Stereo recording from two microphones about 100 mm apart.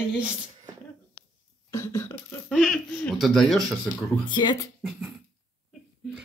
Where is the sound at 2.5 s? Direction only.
5° right (ahead or behind).